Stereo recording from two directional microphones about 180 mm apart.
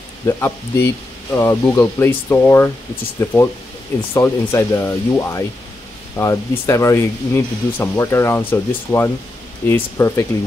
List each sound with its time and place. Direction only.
0.3 s speech: 15° left (ahead or behind)